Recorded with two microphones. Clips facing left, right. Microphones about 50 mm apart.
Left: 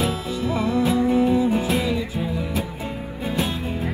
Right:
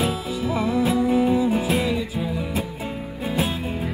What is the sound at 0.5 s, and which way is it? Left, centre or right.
Music, centre.